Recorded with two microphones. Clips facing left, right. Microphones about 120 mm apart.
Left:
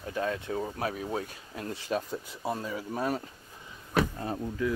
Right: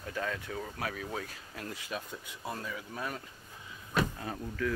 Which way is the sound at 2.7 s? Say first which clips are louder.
Left 8 dB; 35° left (ahead or behind).